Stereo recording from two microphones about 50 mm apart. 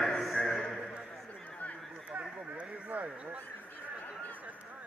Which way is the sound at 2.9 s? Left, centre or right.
Right.